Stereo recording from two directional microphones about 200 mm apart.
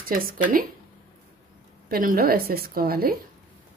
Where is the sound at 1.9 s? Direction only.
45° right (ahead or behind).